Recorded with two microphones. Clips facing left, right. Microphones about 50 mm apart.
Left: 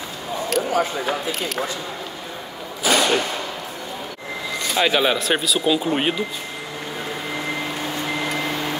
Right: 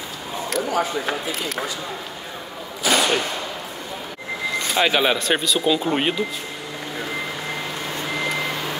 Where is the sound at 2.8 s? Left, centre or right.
Centre.